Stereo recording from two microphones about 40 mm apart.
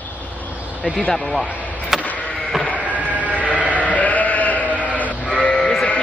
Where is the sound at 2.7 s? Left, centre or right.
Right.